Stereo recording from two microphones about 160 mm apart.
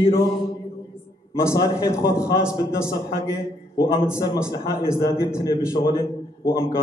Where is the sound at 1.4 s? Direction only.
20° left (ahead or behind).